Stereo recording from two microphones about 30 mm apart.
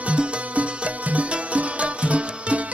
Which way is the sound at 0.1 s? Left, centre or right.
Right.